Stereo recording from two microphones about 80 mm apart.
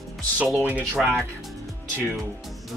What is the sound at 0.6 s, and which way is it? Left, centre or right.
Speech, centre.